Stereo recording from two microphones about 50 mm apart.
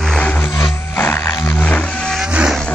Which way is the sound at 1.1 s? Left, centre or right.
Left.